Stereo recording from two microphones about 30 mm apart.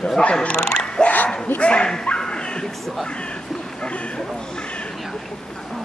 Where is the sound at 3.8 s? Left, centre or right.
Left.